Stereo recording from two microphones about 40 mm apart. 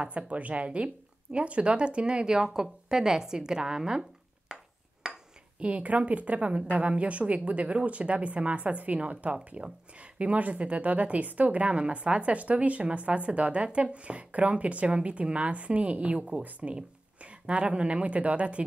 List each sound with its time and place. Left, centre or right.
0.3 s speech: right; by 4.0 s centre
5.0 s dishes: centre
5.6 s a woman's voice: right